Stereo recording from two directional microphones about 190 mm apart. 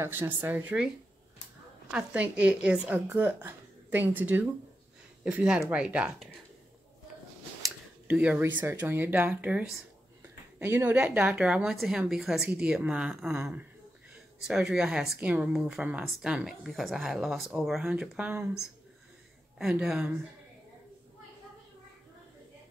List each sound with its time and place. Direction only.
0.0 s a woman's voice: 10° right (ahead or behind)
1.9 s a woman's voice: 5° right (ahead or behind)
8.1 s a woman's voice: 5° right (ahead or behind)
19.6 s speech: 5° right (ahead or behind)